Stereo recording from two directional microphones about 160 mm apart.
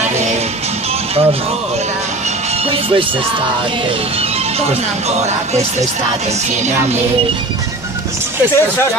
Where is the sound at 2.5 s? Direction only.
35° right (ahead or behind).